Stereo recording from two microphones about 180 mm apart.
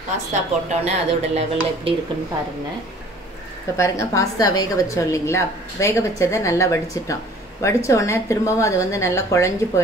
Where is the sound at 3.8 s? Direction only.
15° left (ahead or behind).